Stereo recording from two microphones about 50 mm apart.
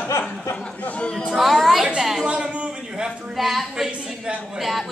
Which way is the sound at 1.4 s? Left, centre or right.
Centre.